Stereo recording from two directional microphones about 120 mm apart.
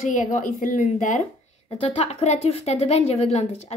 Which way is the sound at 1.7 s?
60° left (ahead or behind).